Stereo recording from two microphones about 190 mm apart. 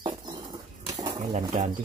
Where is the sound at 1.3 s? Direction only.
40° right (ahead or behind).